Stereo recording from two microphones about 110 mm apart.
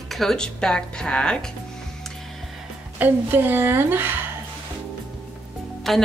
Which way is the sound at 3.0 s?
20° right (ahead or behind).